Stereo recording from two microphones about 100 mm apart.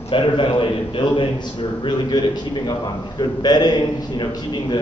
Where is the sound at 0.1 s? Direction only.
55° left (ahead or behind).